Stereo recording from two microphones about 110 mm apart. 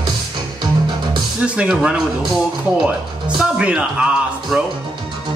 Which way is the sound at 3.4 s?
10° right (ahead or behind).